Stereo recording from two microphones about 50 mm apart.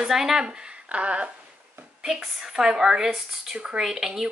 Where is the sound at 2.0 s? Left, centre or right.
Centre.